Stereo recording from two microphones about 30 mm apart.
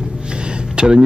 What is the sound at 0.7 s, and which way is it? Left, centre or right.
Speech, right.